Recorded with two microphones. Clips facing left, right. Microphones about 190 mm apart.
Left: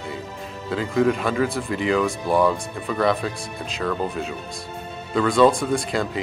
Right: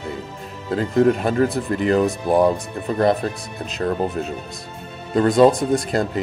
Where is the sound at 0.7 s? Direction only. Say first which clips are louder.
Right 4 dB; 50° right (ahead or behind).